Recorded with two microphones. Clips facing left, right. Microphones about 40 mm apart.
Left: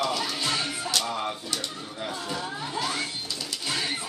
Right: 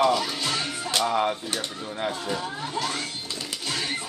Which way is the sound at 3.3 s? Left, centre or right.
Right.